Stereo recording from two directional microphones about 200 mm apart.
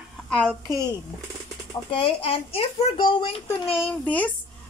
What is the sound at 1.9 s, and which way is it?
A child's voice, 25° left (ahead or behind).